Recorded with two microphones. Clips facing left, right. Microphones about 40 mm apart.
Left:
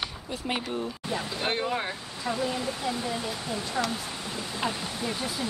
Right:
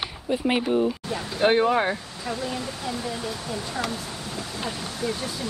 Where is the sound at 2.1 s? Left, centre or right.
Centre.